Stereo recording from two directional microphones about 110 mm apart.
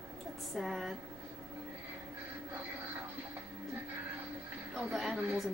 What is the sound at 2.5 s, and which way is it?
Music, 20° right (ahead or behind).